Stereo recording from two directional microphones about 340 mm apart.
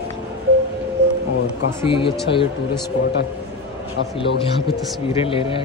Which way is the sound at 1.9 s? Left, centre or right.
Centre.